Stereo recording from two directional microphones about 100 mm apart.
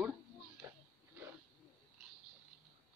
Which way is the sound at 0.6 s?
25° right (ahead or behind).